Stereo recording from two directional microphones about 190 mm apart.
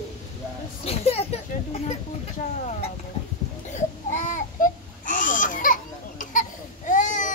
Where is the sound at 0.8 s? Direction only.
30° left (ahead or behind).